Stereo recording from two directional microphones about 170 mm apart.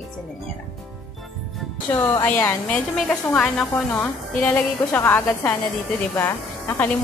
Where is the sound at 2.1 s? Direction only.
15° left (ahead or behind).